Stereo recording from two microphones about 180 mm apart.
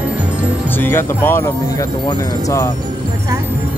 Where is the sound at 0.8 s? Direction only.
15° left (ahead or behind).